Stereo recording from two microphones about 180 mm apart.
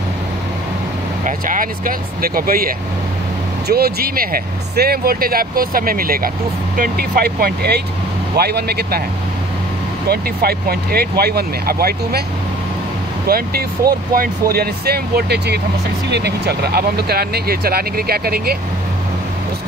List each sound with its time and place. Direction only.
1.2 s speech: 50° right (ahead or behind)
10.0 s speech: 60° right (ahead or behind)
13.3 s speech: 55° right (ahead or behind)